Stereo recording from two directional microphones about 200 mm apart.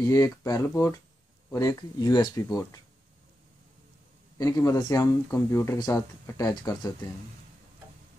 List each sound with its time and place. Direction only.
0.0 s speech: 15° left (ahead or behind)
4.4 s speech: 15° left (ahead or behind)